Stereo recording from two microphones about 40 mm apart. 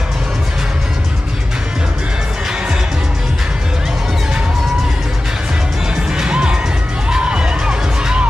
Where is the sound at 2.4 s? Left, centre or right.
Centre.